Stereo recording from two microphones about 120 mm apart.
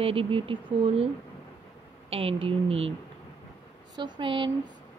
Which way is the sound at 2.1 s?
55° right (ahead or behind).